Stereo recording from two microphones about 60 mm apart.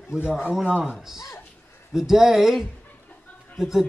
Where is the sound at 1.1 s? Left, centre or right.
Left.